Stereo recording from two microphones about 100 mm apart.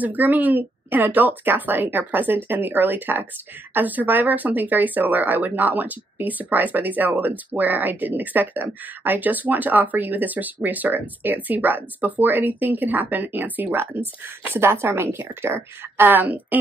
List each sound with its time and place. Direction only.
0.0 s a woman's voice: 15° right (ahead or behind)